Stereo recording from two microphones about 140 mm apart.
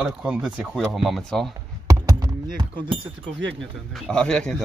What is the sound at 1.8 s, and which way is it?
Chop, 25° right (ahead or behind).